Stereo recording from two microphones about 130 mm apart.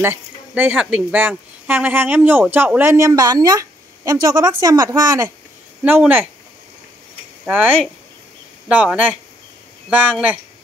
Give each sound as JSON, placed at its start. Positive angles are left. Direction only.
{"t": 0.0, "sound": "a woman's voice", "side_deg": -15}
{"t": 5.9, "sound": "speech", "side_deg": -15}
{"t": 7.4, "sound": "speech", "side_deg": -10}